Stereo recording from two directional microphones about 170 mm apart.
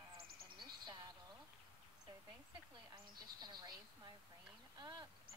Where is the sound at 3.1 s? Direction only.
25° right (ahead or behind).